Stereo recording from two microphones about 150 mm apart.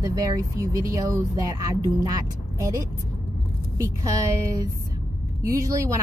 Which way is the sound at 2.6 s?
20° right (ahead or behind).